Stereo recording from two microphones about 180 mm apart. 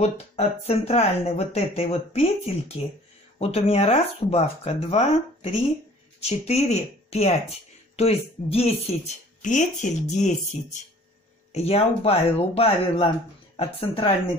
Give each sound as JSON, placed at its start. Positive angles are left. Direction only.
{"t": 0.0, "sound": "speech", "side_deg": 35}